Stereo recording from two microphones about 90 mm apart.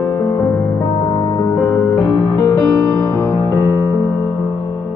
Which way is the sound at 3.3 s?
40° right (ahead or behind).